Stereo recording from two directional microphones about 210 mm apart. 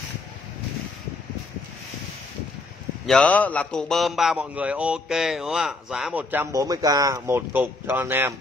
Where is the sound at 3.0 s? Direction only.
5° left (ahead or behind); by 8.3 s 10° right (ahead or behind).